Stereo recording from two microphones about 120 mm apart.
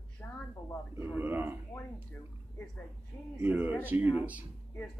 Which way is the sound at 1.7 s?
15° left (ahead or behind).